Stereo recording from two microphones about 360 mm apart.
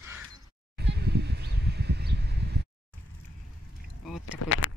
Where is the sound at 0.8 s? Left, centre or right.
Right.